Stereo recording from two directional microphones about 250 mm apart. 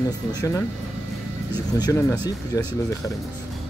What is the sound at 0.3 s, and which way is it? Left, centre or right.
Speech, centre.